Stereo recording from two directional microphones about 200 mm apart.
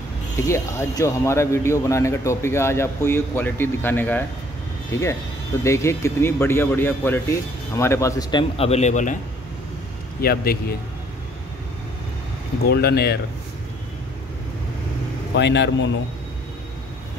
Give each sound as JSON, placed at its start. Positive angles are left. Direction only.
{"t": 0.4, "sound": "a man's voice", "side_deg": 15}
{"t": 10.2, "sound": "speech", "side_deg": 50}
{"t": 12.6, "sound": "speech", "side_deg": 55}
{"t": 15.3, "sound": "speech", "side_deg": 60}